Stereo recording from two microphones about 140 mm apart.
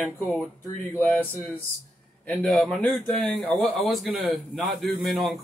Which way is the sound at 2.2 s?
5° left (ahead or behind).